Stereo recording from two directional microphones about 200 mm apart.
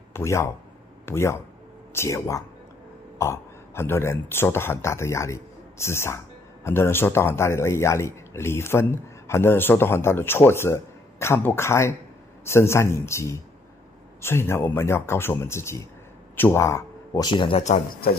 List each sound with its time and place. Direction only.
0.1 s speech: 15° left (ahead or behind); by 17.8 s 30° left (ahead or behind)